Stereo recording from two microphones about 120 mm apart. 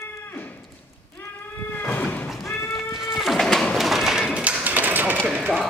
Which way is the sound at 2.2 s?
Centre (ahead or behind).